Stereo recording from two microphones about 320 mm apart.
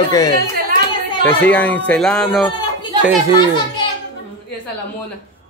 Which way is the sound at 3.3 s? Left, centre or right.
Centre.